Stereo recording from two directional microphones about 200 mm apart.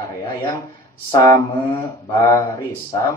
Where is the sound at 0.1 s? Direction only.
15° left (ahead or behind).